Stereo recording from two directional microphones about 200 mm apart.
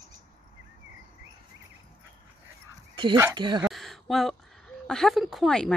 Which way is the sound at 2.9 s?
25° right (ahead or behind).